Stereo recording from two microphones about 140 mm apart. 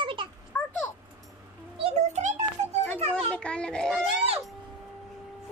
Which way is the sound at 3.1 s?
5° left (ahead or behind).